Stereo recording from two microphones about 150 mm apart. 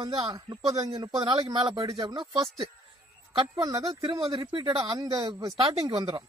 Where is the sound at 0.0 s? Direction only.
30° right (ahead or behind).